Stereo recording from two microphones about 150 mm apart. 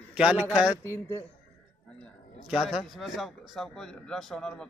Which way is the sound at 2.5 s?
Centre (ahead or behind).